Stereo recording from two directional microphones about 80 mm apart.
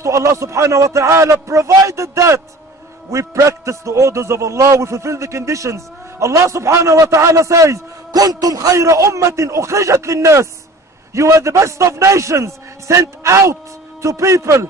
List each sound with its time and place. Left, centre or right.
0.0 s a man's voice: right
8.2 s a man's voice: right